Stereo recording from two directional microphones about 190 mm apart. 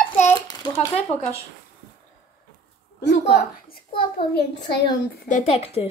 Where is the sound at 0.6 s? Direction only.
20° left (ahead or behind).